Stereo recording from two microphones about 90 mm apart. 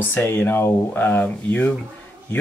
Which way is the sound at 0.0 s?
25° left (ahead or behind).